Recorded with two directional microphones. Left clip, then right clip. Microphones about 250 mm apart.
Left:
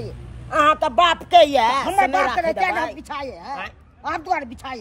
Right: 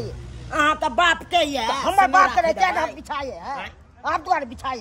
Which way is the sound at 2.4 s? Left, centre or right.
Centre.